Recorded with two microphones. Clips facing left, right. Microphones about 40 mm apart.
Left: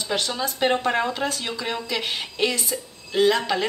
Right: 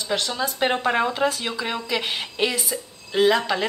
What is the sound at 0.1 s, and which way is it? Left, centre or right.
Speech, centre.